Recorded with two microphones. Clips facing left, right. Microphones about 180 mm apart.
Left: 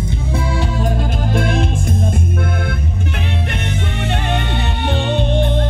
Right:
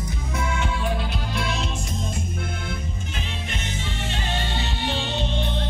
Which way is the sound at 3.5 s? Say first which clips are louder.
Left 8 dB; 60° left (ahead or behind).